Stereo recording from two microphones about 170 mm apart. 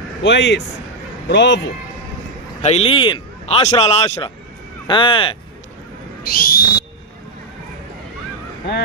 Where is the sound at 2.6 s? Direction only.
35° left (ahead or behind).